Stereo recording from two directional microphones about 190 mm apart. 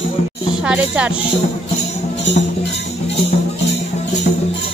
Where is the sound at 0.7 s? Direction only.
5° right (ahead or behind).